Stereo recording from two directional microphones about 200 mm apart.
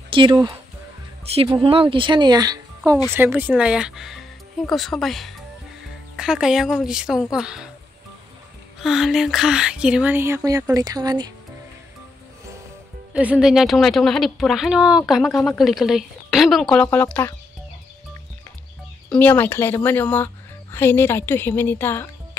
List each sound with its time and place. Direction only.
0.1 s speech: 25° right (ahead or behind)
3.1 s a woman's voice: 10° right (ahead or behind)
8.8 s speech: centre (ahead or behind); by 11.3 s 20° right (ahead or behind)
13.1 s a woman's voice: 5° right (ahead or behind)
19.0 s speech: 10° left (ahead or behind)